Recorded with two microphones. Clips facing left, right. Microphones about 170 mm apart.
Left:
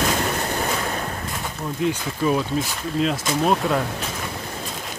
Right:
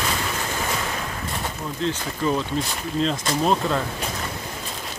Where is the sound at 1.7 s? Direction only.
15° left (ahead or behind).